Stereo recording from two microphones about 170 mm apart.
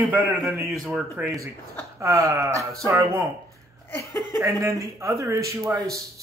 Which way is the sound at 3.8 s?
10° left (ahead or behind).